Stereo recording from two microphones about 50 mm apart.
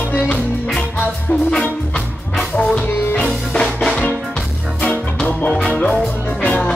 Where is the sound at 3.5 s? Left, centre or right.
Centre.